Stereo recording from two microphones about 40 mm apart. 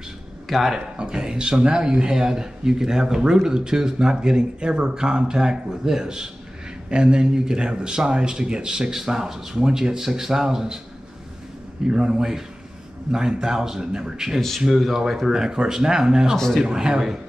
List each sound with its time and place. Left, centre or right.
0.5 s speech: centre
0.7 s a man's voice: right
11.9 s speech: centre
14.8 s speech: centre
15.3 s speech: centre